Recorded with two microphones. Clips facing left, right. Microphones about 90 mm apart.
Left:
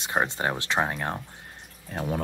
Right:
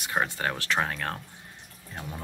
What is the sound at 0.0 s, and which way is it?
Speech, 25° left (ahead or behind).